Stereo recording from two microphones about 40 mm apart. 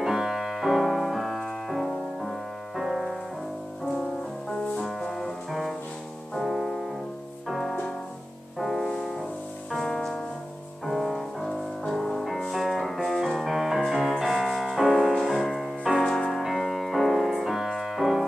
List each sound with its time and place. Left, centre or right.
0.0 s piano: centre
2.7 s music: centre
5.0 s music: centre
5.5 s music: centre
10.9 s music: centre
16.0 s music: left
16.4 s music: centre
17.7 s piano: centre